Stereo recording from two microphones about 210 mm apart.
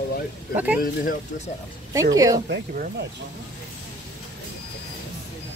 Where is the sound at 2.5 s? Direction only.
50° right (ahead or behind).